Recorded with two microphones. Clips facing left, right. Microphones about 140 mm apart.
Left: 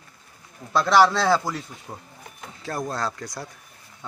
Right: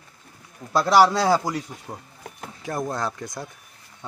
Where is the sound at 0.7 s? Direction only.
10° right (ahead or behind).